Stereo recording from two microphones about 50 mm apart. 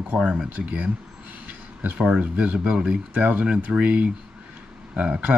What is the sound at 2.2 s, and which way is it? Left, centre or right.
Speech, right.